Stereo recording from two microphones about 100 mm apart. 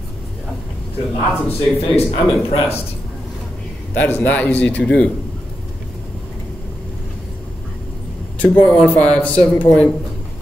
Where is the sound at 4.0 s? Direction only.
15° left (ahead or behind).